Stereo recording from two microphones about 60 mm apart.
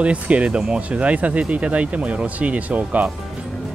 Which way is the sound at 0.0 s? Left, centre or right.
Right.